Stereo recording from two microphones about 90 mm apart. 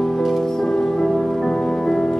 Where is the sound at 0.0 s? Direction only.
Centre (ahead or behind).